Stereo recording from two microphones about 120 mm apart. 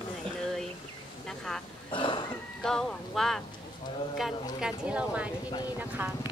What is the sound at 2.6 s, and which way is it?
Speech, 5° left (ahead or behind).